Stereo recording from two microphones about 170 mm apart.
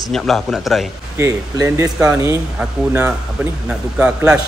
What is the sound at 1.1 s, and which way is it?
Speech, 20° right (ahead or behind).